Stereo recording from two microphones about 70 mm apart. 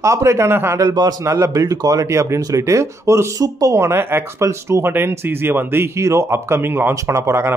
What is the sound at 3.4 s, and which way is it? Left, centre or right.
Speech, right.